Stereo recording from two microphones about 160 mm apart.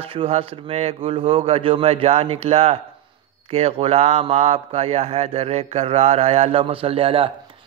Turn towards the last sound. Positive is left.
turn(degrees=-35)  # may be behind; listen again after turning